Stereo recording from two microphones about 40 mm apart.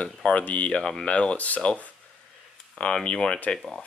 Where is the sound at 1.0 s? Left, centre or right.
Left.